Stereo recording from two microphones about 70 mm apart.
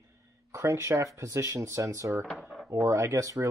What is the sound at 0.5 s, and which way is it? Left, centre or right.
A man's voice, right.